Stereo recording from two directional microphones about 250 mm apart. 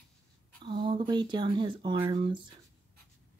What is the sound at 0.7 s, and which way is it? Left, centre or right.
Speech, centre.